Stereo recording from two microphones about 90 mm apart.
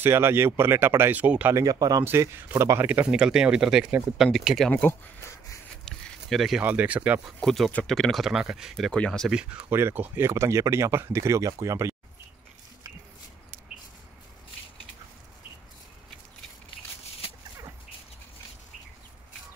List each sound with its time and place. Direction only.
0.0 s speech: 30° right (ahead or behind)
1.5 s speech: 40° right (ahead or behind)
2.0 s speech: 25° right (ahead or behind)
2.8 s speech: 15° right (ahead or behind); by 4.7 s centre (ahead or behind)
5.9 s a sound: 5° left (ahead or behind)
6.6 s speech: 15° right (ahead or behind)
7.4 s speech: centre (ahead or behind)
8.9 s speech: 10° left (ahead or behind)
9.3 s speech: 10° right (ahead or behind)
9.7 s speech: 25° right (ahead or behind)